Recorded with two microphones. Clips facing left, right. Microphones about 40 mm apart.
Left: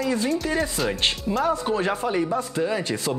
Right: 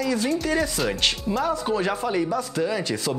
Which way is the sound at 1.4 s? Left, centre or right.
Left.